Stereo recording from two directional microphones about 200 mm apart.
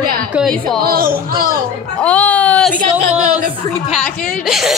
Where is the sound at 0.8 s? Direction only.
45° right (ahead or behind).